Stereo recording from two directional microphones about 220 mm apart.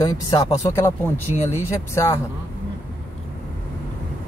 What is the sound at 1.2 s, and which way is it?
Speech, 10° right (ahead or behind).